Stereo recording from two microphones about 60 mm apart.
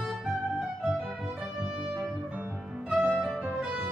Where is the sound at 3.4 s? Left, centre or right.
Centre.